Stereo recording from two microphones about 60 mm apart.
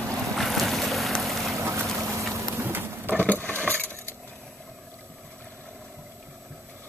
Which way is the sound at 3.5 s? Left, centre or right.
Right.